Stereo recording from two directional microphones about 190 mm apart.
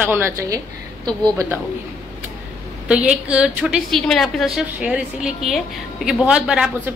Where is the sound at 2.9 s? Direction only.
5° right (ahead or behind).